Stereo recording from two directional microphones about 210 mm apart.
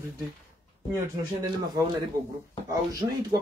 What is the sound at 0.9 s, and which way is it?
Speech, 20° right (ahead or behind).